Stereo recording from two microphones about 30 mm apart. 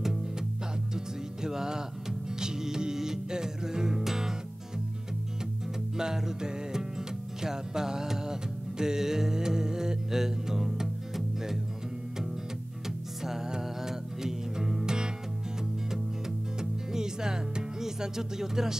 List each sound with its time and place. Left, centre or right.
0.9 s music: centre
5.9 s music: centre
13.6 s music: centre
15.9 s music: centre